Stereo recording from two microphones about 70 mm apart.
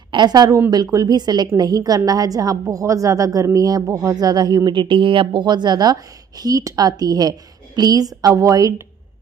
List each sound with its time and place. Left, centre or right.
0.2 s a woman's voice: right
1.6 s a woman's voice: right